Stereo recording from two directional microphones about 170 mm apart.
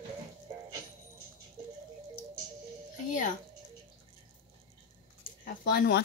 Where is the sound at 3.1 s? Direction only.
45° left (ahead or behind).